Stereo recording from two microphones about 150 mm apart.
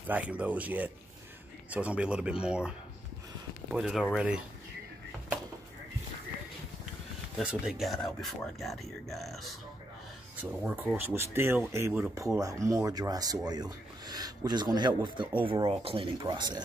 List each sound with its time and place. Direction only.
0.1 s speech: 10° right (ahead or behind)
3.7 s speech: centre (ahead or behind)
7.3 s speech: 5° right (ahead or behind)
10.6 s speech: 10° right (ahead or behind)
12.4 s speech: 20° right (ahead or behind)